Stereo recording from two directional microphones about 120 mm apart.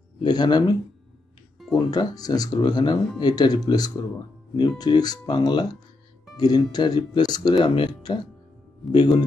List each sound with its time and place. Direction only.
0.2 s speech: 35° left (ahead or behind)